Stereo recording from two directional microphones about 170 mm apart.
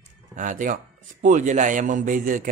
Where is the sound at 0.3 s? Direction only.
50° right (ahead or behind).